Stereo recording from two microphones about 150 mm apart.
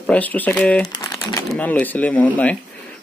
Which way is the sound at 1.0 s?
25° left (ahead or behind).